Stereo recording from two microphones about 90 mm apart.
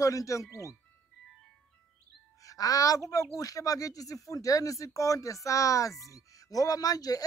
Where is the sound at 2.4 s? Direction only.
40° left (ahead or behind).